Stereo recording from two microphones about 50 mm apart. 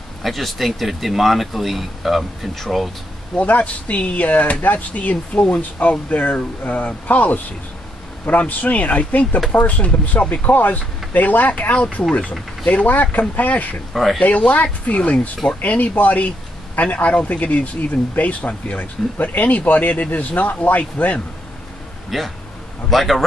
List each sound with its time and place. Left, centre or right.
0.2 s speech: centre
3.3 s speech: left
13.9 s speech: centre
14.2 s speech: left
22.1 s speech: centre